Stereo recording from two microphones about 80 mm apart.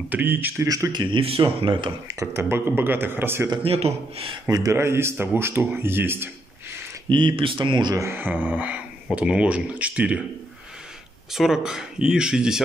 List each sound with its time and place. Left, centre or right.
0.1 s speech: right
0.7 s speech: right
0.9 s speech: right
2.1 s speech: right
4.5 s speech: right
4.7 s speech: right
7.1 s speech: right
7.9 s speech: right
8.2 s speech: right
11.3 s speech: centre